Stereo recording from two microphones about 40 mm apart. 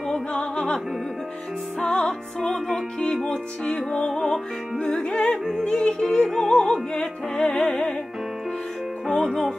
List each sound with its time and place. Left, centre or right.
0.1 s music: left
1.8 s music: centre
6.0 s music: centre
9.0 s music: centre